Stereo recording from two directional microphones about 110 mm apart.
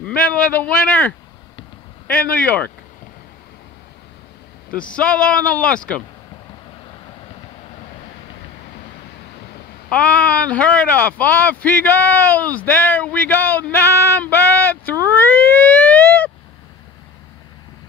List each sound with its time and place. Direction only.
0.0 s speech: 10° left (ahead or behind)
4.9 s speech: 10° left (ahead or behind)
9.8 s speech: 10° left (ahead or behind)
15.0 s a sound: 15° left (ahead or behind)